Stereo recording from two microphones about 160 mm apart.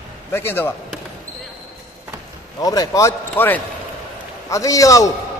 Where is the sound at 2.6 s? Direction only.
20° left (ahead or behind).